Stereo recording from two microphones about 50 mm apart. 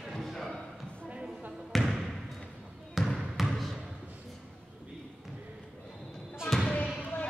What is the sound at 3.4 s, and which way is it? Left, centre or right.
Basketball bounce, centre.